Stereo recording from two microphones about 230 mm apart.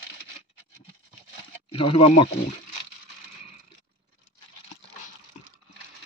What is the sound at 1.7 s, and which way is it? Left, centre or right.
Speech, left.